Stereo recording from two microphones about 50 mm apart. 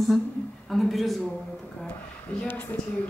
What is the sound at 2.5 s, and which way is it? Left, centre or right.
Speech, left.